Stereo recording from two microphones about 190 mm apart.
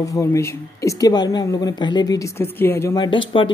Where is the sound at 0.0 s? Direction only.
15° left (ahead or behind).